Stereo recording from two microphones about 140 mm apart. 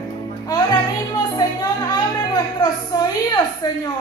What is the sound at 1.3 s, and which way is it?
Music, 25° left (ahead or behind).